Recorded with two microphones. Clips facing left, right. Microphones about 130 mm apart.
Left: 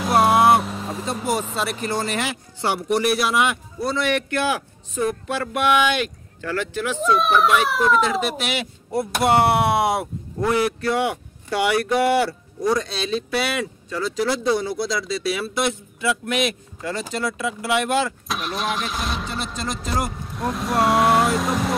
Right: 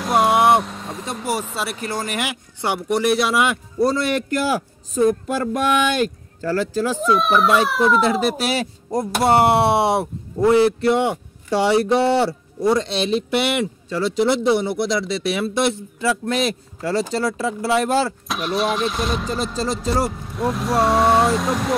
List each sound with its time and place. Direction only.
0.0 s a sound: centre (ahead or behind)
1.5 s speech: 5° right (ahead or behind)
3.8 s a man's voice: 40° right (ahead or behind)
7.0 s speech: centre (ahead or behind)
8.0 s speech: 35° right (ahead or behind)
18.3 s speech: centre (ahead or behind)
19.3 s a man's voice: 35° right (ahead or behind)
20.1 s speech: centre (ahead or behind)